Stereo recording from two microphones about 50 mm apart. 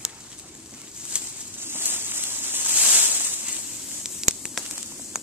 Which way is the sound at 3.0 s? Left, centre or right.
Right.